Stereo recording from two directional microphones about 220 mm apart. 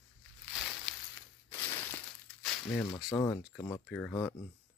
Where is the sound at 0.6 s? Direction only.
Centre (ahead or behind).